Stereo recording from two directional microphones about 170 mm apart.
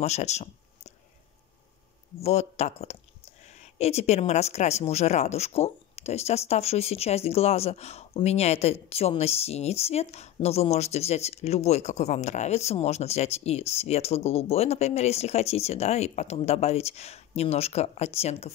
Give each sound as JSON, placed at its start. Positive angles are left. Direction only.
{"t": 0.0, "sound": "speech", "side_deg": 40}
{"t": 2.2, "sound": "speech", "side_deg": 40}